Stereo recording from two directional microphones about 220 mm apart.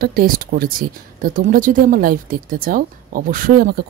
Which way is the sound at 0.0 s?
40° right (ahead or behind).